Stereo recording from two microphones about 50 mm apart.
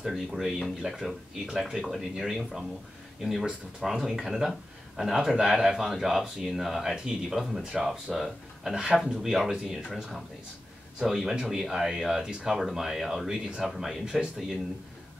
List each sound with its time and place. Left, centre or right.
0.0 s speech: centre
11.0 s speech: centre